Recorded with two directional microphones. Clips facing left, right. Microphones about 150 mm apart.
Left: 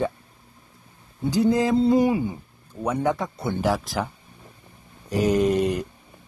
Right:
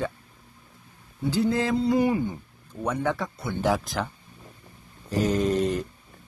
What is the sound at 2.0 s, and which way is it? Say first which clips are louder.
Speech: left 2 dB; 15° left (ahead or behind).